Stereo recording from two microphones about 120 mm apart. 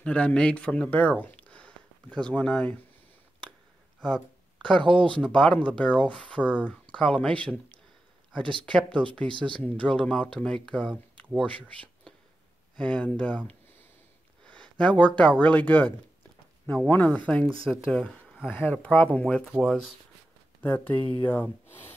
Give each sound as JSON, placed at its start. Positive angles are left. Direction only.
{"t": 0.0, "sound": "speech", "side_deg": 10}
{"t": 4.0, "sound": "a sound", "side_deg": 5}
{"t": 5.0, "sound": "speech", "side_deg": 10}
{"t": 8.6, "sound": "speech", "side_deg": 10}
{"t": 14.4, "sound": "a sound", "side_deg": 10}
{"t": 15.4, "sound": "speech", "side_deg": 15}
{"t": 20.6, "sound": "speech", "side_deg": 15}